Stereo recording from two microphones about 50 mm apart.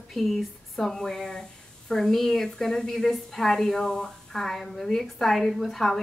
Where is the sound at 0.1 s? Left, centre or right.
Centre.